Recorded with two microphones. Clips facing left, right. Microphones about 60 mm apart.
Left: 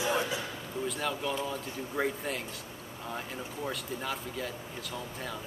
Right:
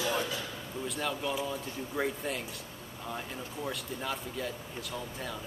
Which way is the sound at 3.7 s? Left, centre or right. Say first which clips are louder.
Even; centre.